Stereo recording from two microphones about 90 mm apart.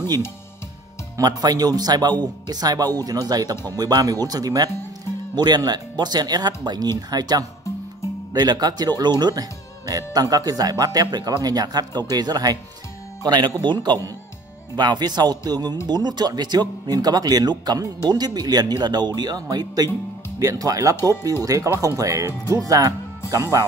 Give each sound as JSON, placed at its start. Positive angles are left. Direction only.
{"t": 1.4, "sound": "speech", "side_deg": -45}